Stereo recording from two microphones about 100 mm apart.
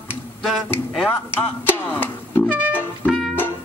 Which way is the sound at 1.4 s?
20° left (ahead or behind).